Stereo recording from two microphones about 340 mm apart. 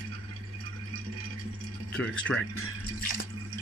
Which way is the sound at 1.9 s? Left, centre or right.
Centre.